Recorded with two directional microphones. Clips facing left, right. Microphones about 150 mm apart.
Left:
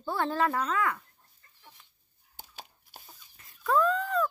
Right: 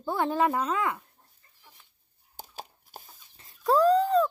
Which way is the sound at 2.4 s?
40° right (ahead or behind).